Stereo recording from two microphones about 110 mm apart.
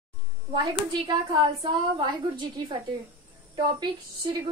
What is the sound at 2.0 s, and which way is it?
Speech, 45° right (ahead or behind).